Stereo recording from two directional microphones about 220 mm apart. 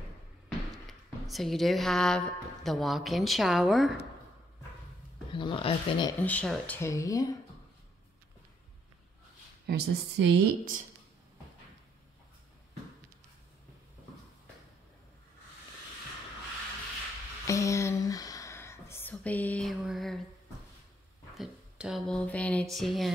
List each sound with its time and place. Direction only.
0.8 s a woman's voice: centre (ahead or behind)
5.3 s speech: 25° left (ahead or behind)
6.2 s speech: 5° left (ahead or behind)
9.7 s a woman's voice: 50° right (ahead or behind)
17.5 s a sound: 15° left (ahead or behind)
21.4 s a woman's voice: centre (ahead or behind)